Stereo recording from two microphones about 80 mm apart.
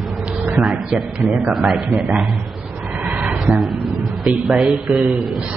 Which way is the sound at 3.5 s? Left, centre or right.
Centre.